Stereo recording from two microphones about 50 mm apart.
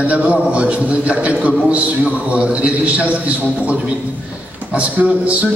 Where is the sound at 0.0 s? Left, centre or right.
Right.